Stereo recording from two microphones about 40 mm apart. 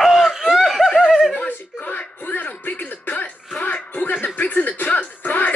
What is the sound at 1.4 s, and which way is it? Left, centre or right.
Music, left.